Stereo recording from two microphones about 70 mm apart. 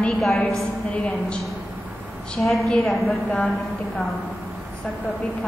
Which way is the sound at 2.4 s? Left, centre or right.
Centre.